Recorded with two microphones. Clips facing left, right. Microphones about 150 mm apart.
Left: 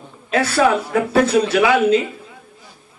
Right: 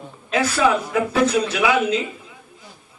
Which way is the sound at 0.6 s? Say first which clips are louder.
Left 3 dB; 45° left (ahead or behind).